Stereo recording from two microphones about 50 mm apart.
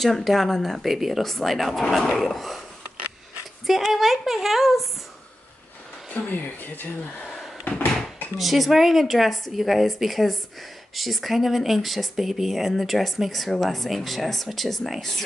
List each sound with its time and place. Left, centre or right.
0.0 s speech: centre
3.6 s speech: centre
6.1 s speech: left
7.6 s a sound: left
8.4 s speech: centre